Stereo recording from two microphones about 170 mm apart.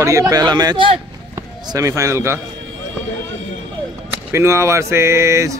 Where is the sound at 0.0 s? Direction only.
20° right (ahead or behind).